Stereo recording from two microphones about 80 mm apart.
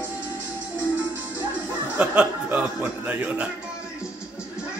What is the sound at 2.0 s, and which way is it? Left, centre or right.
A man's voice, centre.